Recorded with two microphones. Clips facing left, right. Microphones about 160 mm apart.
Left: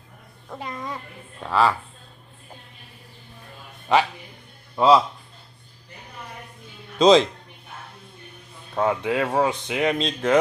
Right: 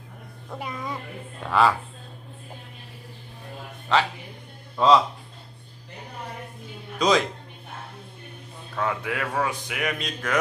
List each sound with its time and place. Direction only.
0.6 s a child's voice: 10° right (ahead or behind)
1.5 s speech: centre (ahead or behind)
3.9 s speech: 15° left (ahead or behind)
7.0 s speech: 25° left (ahead or behind)
8.7 s speech: 25° left (ahead or behind)